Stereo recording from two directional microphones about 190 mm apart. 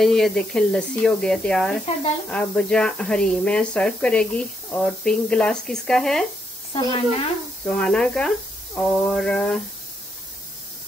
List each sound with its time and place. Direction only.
0.0 s speech: centre (ahead or behind)
6.7 s a woman's voice: 30° left (ahead or behind)
7.6 s speech: 5° left (ahead or behind)